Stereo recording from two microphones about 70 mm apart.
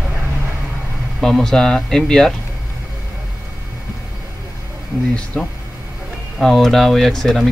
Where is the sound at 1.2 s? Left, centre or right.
Centre.